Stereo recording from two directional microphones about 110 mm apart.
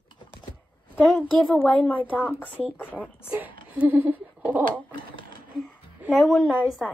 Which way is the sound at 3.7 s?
15° right (ahead or behind).